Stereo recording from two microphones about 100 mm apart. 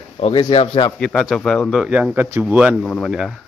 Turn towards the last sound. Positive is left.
turn(degrees=10)  # may be behind; listen again after turning